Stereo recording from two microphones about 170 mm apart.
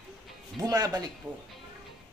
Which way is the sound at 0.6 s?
20° right (ahead or behind).